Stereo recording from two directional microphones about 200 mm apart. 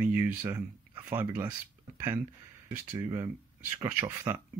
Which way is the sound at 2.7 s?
15° right (ahead or behind).